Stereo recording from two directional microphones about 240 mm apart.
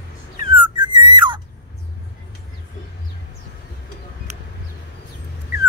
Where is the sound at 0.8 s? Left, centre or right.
Centre.